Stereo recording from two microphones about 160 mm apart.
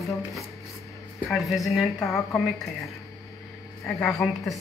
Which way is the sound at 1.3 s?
Centre (ahead or behind).